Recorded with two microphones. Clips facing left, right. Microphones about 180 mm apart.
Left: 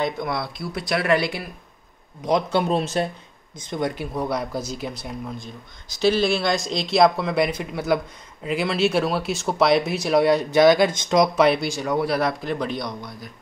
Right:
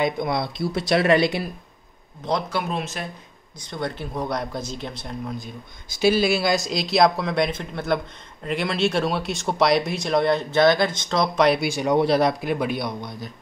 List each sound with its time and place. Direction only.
0.0 s speech: 20° right (ahead or behind)
2.2 s a man's voice: 20° left (ahead or behind)
2.6 s speech: 30° left (ahead or behind)
3.5 s speech: 20° left (ahead or behind)
5.9 s a man's voice: 10° right (ahead or behind); by 11.4 s 15° left (ahead or behind)
11.4 s a man's voice: 5° right (ahead or behind)